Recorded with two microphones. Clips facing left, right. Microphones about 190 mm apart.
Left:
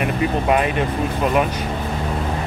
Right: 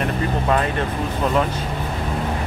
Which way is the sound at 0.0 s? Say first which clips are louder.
Left 2 dB; 15° left (ahead or behind).